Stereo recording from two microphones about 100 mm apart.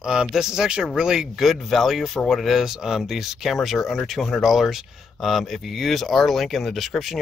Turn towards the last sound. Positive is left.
turn(degrees=0)  # may be behind; listen again after turning